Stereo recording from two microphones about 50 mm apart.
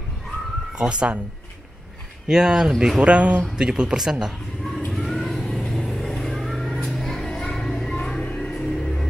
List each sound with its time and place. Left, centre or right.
0.7 s speech: centre
2.2 s speech: centre
3.0 s speech: right
4.9 s vehicle: centre; by 8.5 s left
8.5 s music: centre